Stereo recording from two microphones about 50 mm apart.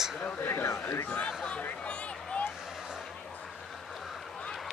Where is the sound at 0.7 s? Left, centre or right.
Left.